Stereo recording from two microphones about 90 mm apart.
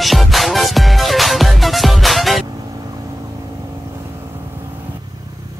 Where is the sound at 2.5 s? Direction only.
40° right (ahead or behind).